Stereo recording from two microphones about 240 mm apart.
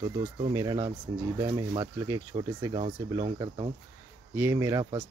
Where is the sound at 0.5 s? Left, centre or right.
Centre.